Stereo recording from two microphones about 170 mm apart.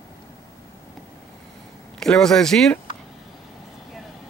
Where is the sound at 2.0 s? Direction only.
5° left (ahead or behind).